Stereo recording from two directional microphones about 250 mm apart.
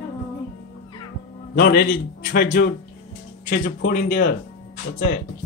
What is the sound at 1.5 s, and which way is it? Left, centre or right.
Speech, left.